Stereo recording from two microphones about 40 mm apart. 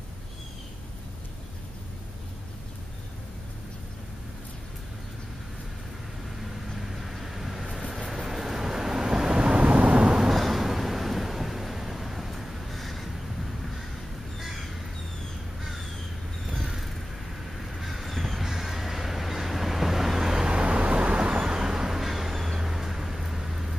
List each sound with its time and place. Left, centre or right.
6.8 s vehicle: centre; by 10.3 s right
10.3 s a sound: centre
14.4 s crow: centre
16.6 s a sound: centre
17.6 s crow: centre
18.4 s vehicle: centre
20.4 s vehicle: right
21.5 s vehicle: centre